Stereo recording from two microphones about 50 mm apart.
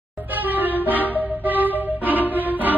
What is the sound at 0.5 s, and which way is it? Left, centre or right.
Music, right.